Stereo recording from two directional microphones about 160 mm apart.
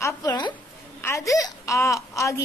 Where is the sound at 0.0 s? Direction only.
25° left (ahead or behind).